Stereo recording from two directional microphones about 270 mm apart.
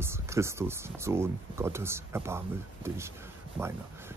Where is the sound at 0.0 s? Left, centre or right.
Centre.